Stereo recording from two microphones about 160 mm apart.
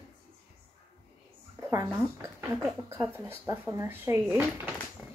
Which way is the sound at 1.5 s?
20° right (ahead or behind).